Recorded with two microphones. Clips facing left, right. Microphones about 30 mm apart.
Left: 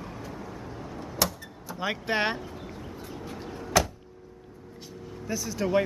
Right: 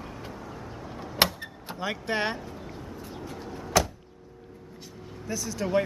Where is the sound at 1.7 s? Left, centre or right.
Centre.